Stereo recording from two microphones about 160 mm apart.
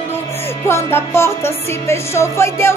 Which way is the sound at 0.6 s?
15° left (ahead or behind).